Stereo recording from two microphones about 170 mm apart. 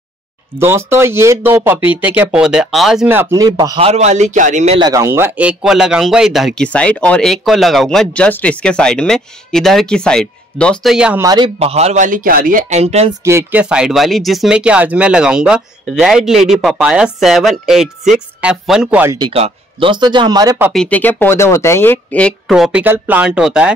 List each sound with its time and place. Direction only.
0.6 s speech: 15° right (ahead or behind); by 4.7 s 45° right (ahead or behind)
4.7 s a man's voice: 20° right (ahead or behind); by 11.2 s 5° right (ahead or behind)
11.2 s a man's voice: 25° right (ahead or behind)
13.2 s a man's voice: 15° right (ahead or behind)
19.1 s speech: 30° right (ahead or behind)
20.7 s speech: 5° left (ahead or behind)
22.5 s speech: 5° right (ahead or behind)